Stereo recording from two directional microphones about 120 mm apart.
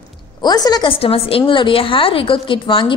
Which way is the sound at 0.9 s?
50° left (ahead or behind).